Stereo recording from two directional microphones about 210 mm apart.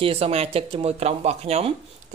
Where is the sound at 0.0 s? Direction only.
30° right (ahead or behind).